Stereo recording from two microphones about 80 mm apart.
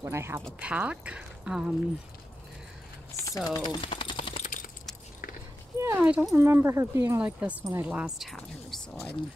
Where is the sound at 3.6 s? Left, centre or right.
Left.